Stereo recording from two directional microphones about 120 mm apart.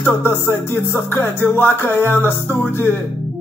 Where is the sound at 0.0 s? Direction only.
20° left (ahead or behind).